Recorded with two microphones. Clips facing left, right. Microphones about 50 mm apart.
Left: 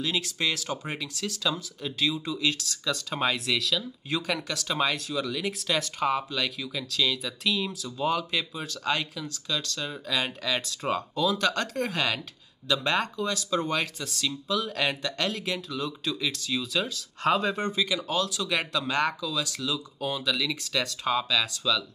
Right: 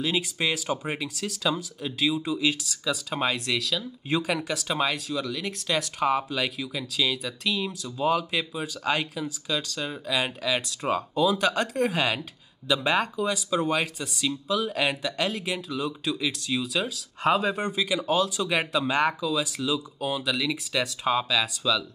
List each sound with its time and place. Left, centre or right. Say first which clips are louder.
0.0 s speech: right 2 dB; centre